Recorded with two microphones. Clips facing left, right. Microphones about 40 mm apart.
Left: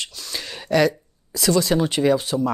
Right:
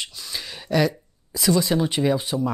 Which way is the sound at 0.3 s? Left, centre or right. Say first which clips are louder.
Left 4 dB; centre.